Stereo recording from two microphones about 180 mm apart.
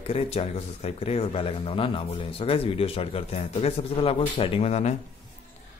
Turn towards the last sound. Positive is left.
turn(degrees=35)  # may be behind; listen again after turning